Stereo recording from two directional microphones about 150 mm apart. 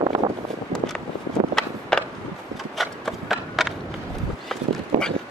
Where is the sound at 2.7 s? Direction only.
Centre (ahead or behind).